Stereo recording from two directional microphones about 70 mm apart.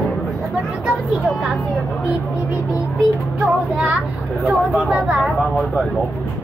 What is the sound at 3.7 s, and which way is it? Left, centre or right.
Speech, centre.